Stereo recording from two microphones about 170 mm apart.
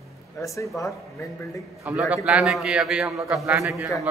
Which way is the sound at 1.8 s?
5° right (ahead or behind).